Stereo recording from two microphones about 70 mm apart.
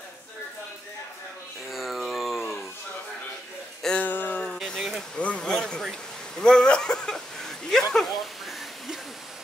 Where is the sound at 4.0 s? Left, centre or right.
Left.